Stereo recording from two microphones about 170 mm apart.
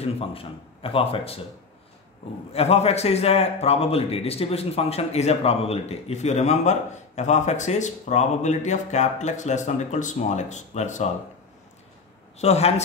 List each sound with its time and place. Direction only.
0.0 s a man's voice: 35° left (ahead or behind)
2.5 s a man's voice: 35° left (ahead or behind)
12.4 s a man's voice: 40° left (ahead or behind)